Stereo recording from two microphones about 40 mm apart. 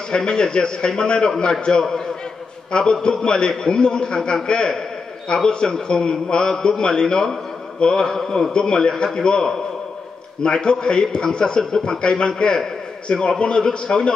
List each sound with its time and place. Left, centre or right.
0.1 s a man's voice: left